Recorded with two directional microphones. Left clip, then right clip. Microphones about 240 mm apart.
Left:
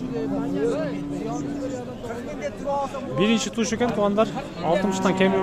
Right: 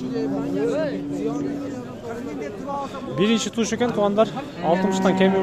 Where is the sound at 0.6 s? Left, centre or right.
Right.